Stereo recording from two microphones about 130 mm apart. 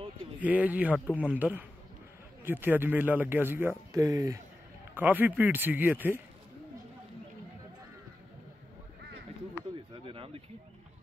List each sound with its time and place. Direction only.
0.4 s speech: 10° right (ahead or behind)
4.9 s speech: 15° right (ahead or behind)
10.0 s a sound: 45° right (ahead or behind)